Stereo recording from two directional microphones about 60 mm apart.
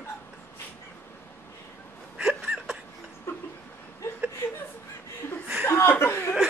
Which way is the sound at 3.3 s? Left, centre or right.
Left.